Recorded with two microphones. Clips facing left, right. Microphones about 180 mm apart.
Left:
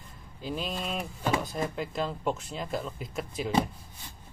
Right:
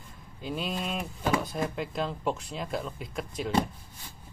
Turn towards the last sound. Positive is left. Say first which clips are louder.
# even
turn(degrees=0)  # may be behind; listen again after turning